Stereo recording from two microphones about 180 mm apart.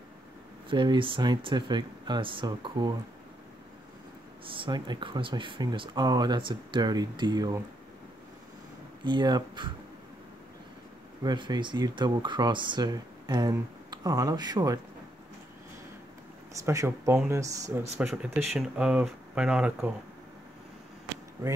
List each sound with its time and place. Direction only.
0.7 s speech: 25° right (ahead or behind)
4.6 s speech: 25° right (ahead or behind)
9.0 s speech: 25° right (ahead or behind)
11.2 s speech: 25° right (ahead or behind)
16.6 s speech: 15° right (ahead or behind)